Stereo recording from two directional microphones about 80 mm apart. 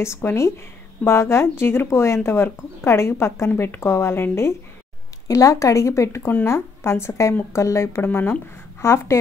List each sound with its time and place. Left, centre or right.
0.0 s speech: left